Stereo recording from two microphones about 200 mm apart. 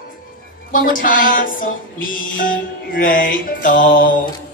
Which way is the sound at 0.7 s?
45° left (ahead or behind).